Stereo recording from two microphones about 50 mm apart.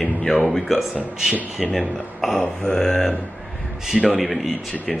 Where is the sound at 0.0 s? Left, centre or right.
Centre.